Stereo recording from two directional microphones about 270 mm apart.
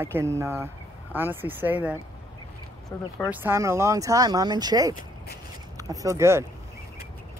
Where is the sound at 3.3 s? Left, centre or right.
Centre.